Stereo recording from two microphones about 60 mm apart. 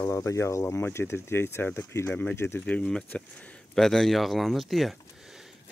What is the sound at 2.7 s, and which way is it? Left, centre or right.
Speech, centre.